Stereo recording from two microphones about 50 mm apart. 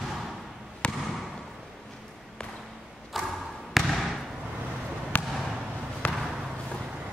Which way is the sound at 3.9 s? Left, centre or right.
Centre.